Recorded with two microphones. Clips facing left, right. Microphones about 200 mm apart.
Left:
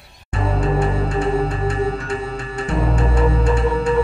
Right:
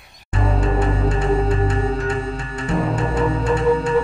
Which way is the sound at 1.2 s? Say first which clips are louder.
Even; 40° right (ahead or behind).